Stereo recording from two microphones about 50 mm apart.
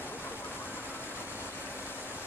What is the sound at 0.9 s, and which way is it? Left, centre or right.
Vehicle, left.